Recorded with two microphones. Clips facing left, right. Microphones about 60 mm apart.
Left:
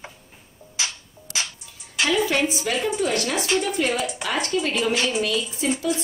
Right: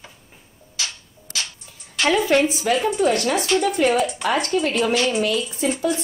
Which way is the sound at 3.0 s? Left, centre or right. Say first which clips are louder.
Right 4 dB; right.